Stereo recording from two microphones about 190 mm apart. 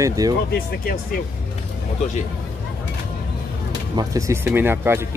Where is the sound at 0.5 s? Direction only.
50° left (ahead or behind).